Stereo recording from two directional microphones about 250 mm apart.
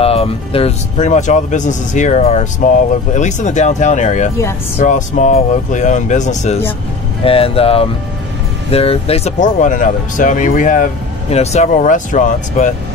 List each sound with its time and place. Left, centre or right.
0.0 s speech: left